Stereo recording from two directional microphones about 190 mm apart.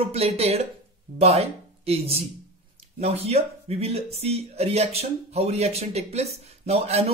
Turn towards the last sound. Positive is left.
turn(degrees=-35)  # may be behind; listen again after turning